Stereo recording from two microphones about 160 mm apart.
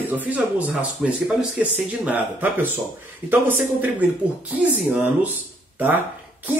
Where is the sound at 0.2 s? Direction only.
10° right (ahead or behind).